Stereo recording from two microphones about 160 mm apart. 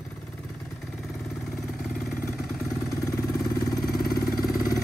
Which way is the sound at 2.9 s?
20° left (ahead or behind).